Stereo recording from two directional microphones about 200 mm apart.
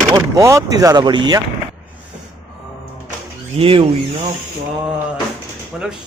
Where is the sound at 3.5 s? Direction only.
30° right (ahead or behind).